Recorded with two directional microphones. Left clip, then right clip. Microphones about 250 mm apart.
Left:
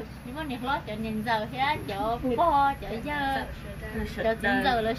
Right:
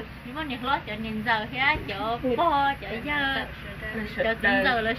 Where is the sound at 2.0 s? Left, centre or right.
Centre.